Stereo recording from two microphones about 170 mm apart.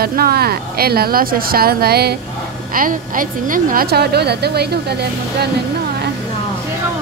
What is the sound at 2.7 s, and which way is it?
A woman's voice, 55° right (ahead or behind).